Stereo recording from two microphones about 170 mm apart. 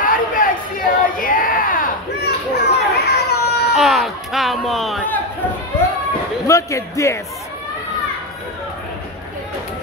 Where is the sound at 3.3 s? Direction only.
75° left (ahead or behind).